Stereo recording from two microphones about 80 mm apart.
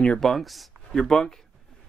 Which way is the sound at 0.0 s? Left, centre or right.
Centre.